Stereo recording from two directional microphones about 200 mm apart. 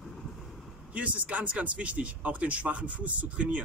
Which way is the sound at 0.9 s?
5° right (ahead or behind).